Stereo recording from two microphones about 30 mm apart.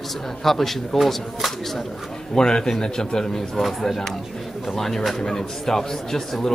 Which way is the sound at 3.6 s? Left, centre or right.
Centre.